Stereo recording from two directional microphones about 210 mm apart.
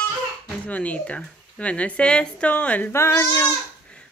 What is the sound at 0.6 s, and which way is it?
A woman's voice, 5° left (ahead or behind).